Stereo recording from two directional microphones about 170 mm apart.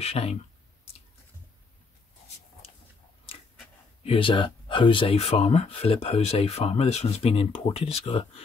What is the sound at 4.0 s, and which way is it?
Speech, 35° left (ahead or behind).